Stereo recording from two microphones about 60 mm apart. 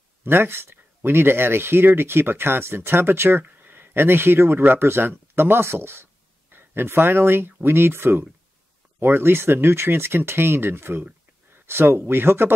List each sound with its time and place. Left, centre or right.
0.2 s speech: right